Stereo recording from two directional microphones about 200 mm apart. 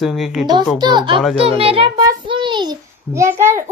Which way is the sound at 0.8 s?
25° right (ahead or behind).